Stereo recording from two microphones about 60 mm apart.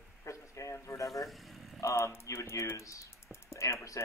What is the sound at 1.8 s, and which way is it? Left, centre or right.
Speech, left.